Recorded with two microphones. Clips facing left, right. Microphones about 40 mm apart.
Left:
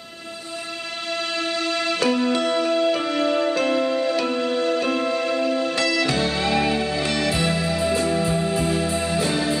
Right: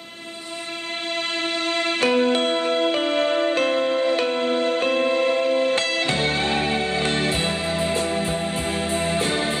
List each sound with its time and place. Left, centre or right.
1.4 s music: right